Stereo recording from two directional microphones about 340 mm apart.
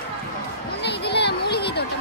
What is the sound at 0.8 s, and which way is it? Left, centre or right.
Children playing, left.